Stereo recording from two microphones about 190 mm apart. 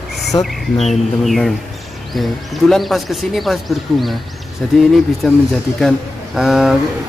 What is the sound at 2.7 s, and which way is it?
Speech, centre (ahead or behind).